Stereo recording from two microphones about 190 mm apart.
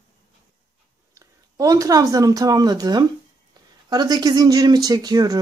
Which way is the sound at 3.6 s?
20° right (ahead or behind).